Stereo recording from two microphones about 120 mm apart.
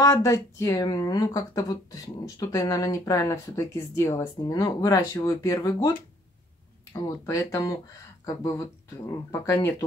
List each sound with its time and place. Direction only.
0.0 s speech: 25° left (ahead or behind)